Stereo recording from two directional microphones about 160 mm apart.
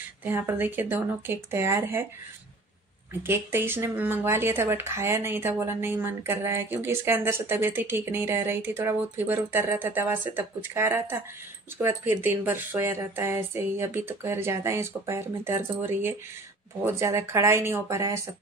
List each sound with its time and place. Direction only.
0.2 s speech: 10° right (ahead or behind)
3.3 s speech: 15° right (ahead or behind)